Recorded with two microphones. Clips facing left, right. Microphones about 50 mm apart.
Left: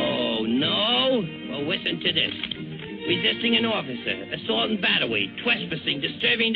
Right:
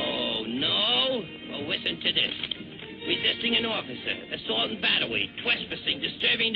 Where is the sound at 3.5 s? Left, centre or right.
Centre.